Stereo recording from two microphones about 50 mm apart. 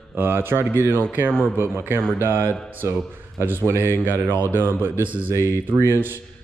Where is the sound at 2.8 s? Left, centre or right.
Right.